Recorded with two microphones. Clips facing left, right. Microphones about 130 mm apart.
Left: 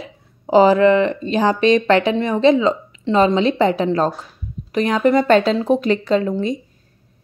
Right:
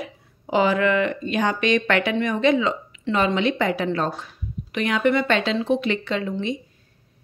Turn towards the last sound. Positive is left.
turn(degrees=40)  # may be behind; listen again after turning